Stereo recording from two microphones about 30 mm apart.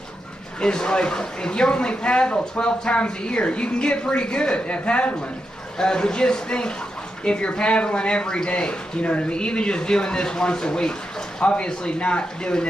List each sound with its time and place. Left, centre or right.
0.6 s speech: left
5.8 s speech: left